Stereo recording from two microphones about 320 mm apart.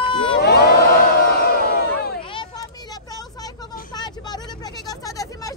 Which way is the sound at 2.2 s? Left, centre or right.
Centre.